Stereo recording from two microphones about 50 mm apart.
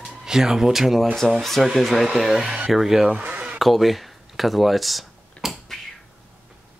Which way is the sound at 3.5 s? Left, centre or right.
Centre.